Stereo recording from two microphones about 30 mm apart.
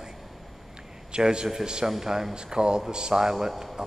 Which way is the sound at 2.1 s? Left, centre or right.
Centre.